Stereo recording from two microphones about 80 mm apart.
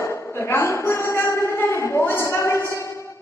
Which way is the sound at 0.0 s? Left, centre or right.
Left.